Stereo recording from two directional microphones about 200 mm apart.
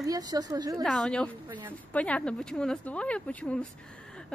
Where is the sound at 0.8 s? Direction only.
Centre (ahead or behind).